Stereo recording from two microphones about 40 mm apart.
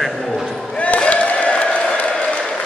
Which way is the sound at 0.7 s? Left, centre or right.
Left.